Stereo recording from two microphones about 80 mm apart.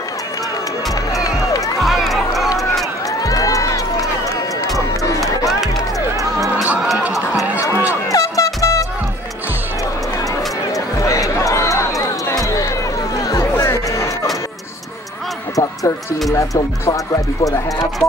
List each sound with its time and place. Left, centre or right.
1.8 s run: centre
3.2 s a sound: left
4.7 s run: left
8.1 s music: left
11.0 s music: left
12.4 s a sound: left
13.3 s music: left
15.5 s basketball bounce: left
16.3 s speech: left